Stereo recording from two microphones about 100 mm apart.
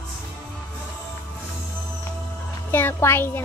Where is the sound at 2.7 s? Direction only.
20° left (ahead or behind).